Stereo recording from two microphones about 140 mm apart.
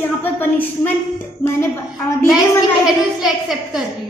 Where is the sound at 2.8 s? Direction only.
Centre (ahead or behind).